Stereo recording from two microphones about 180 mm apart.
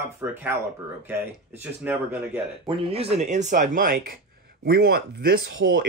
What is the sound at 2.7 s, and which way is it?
Speech, 30° right (ahead or behind).